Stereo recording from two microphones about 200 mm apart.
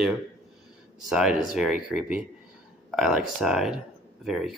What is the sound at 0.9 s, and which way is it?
Speech, centre (ahead or behind).